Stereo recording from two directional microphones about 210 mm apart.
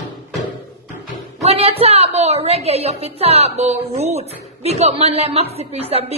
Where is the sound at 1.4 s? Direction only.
30° right (ahead or behind).